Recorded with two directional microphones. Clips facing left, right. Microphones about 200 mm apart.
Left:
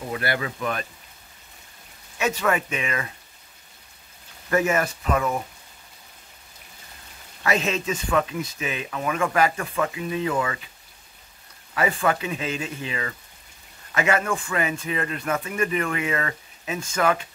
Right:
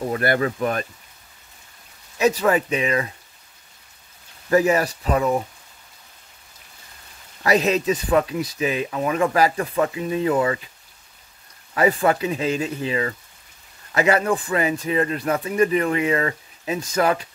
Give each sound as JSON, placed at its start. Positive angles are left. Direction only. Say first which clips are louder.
{"t": 0.1, "sound": "speech", "louder": "right 5 dB", "side_deg": -45}
{"t": 2.1, "sound": "speech", "louder": "right 5 dB", "side_deg": -35}
{"t": 4.5, "sound": "speech", "louder": "right 4 dB", "side_deg": -35}
{"t": 7.4, "sound": "speech", "louder": "right 5 dB", "side_deg": -35}
{"t": 12.1, "sound": "speech", "louder": "right 5 dB", "side_deg": -35}